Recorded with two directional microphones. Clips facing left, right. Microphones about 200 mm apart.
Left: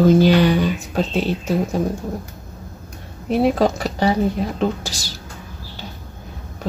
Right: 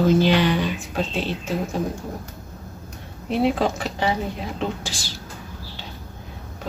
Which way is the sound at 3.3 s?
45° left (ahead or behind).